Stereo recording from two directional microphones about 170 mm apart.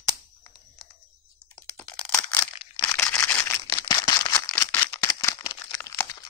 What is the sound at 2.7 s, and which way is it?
Camera, 10° left (ahead or behind).